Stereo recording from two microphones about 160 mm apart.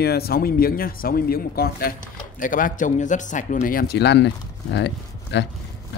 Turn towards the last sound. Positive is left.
turn(degrees=90)